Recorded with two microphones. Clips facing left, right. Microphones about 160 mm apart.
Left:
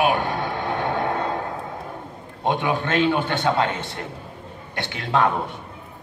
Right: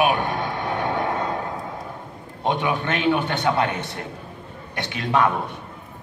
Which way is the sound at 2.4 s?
20° right (ahead or behind).